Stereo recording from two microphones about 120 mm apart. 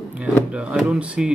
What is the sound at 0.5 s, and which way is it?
Speech, 10° right (ahead or behind).